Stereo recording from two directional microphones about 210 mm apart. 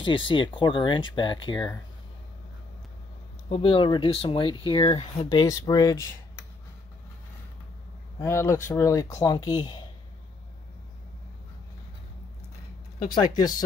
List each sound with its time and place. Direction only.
0.0 s speech: 25° left (ahead or behind)
3.4 s speech: 25° left (ahead or behind)
8.2 s speech: 15° left (ahead or behind)